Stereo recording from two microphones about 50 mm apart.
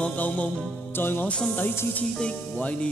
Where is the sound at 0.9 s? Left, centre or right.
Left.